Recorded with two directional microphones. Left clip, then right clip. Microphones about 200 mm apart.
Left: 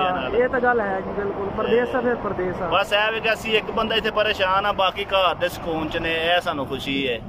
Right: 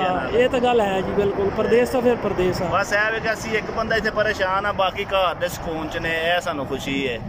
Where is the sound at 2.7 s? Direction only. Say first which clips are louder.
Left 2 dB; 5° left (ahead or behind).